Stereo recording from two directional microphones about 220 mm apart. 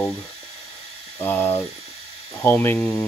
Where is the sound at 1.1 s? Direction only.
10° left (ahead or behind).